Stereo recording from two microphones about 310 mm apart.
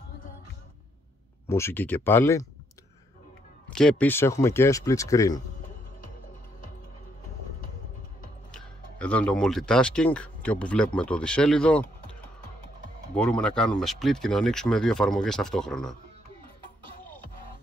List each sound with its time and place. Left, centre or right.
1.5 s speech: centre
3.7 s speech: centre
8.5 s speech: centre
13.1 s speech: centre